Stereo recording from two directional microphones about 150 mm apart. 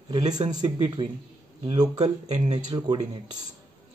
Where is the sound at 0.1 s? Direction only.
30° right (ahead or behind).